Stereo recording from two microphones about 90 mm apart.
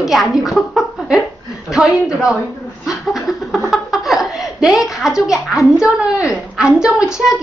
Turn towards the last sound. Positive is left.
turn(degrees=-5)  # may be behind; listen again after turning